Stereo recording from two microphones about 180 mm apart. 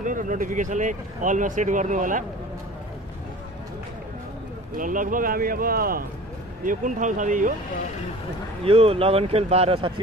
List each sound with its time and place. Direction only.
0.0 s speech: 45° right (ahead or behind)
4.7 s speech: 50° right (ahead or behind)
8.6 s speech: 30° right (ahead or behind)